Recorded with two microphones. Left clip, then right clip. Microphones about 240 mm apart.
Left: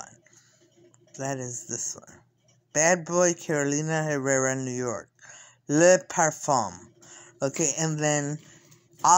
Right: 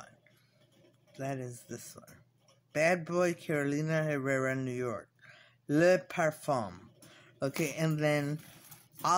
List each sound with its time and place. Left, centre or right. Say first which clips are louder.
1.1 s speech: left 7 dB; centre